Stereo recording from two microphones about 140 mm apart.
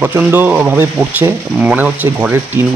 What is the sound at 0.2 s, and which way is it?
Speech, 10° right (ahead or behind).